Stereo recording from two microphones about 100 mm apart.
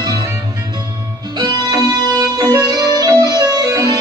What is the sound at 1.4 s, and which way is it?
Music, 40° right (ahead or behind).